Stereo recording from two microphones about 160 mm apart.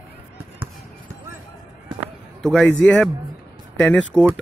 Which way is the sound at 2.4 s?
5° left (ahead or behind).